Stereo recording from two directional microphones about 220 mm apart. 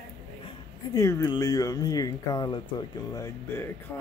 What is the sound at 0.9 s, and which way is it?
Speech, 15° left (ahead or behind).